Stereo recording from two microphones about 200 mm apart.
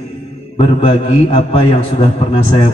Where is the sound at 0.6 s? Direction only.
30° left (ahead or behind).